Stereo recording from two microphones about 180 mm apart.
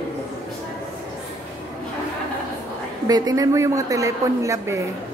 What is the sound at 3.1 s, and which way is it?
A woman's voice, 20° right (ahead or behind).